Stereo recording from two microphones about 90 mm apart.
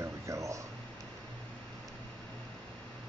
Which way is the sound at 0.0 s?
35° right (ahead or behind).